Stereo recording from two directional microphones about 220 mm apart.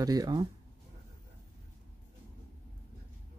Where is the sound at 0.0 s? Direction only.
15° right (ahead or behind).